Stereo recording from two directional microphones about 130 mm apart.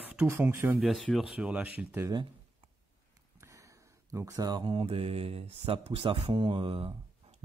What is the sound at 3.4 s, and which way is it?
Mantra, 25° right (ahead or behind).